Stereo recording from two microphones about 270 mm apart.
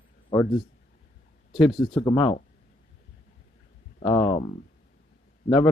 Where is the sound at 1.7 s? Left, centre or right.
Centre.